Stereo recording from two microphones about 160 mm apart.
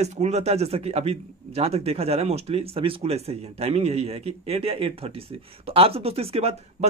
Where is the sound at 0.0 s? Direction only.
45° right (ahead or behind).